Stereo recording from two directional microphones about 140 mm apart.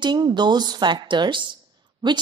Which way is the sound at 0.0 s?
30° right (ahead or behind).